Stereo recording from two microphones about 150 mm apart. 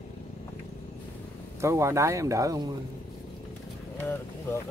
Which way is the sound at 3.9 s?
15° left (ahead or behind).